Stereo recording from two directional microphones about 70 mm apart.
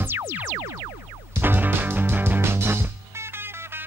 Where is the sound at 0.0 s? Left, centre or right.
Right.